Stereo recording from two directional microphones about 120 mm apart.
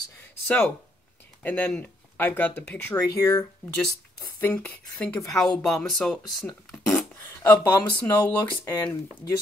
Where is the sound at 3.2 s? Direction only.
30° left (ahead or behind).